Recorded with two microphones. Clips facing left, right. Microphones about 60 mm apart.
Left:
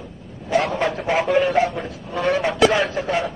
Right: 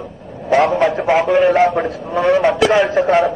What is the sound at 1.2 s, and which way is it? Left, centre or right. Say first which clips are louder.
Speech: right 3 dB; centre.